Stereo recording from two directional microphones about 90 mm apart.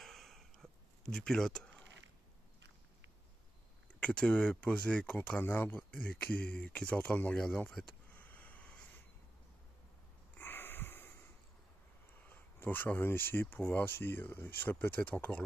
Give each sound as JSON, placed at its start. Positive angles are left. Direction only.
{"t": 0.0, "sound": "a sound", "side_deg": 5}
{"t": 4.0, "sound": "speech", "side_deg": 10}
{"t": 5.8, "sound": "speech", "side_deg": 10}
{"t": 7.8, "sound": "speech", "side_deg": 5}
{"t": 8.1, "sound": "a sound", "side_deg": 20}
{"t": 10.3, "sound": "wheeze", "side_deg": 25}
{"t": 12.3, "sound": "speech", "side_deg": 20}